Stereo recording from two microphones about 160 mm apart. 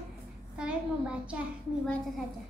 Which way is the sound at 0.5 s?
5° right (ahead or behind).